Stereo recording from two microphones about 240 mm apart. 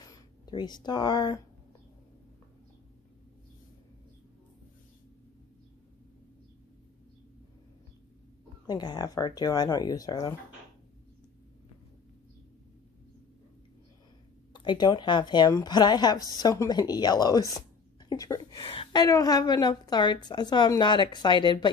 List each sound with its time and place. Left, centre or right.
0.0 s speech: centre
8.6 s speech: centre
14.5 s speech: centre